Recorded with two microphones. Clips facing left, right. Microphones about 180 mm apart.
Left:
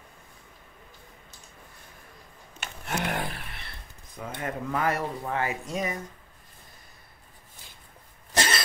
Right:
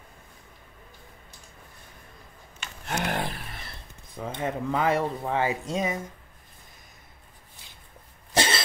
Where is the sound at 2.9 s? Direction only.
30° right (ahead or behind).